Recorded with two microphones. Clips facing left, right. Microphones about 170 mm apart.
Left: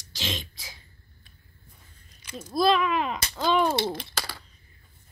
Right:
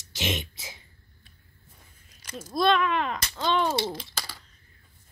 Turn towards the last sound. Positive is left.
turn(degrees=65)  # may be behind; listen again after turning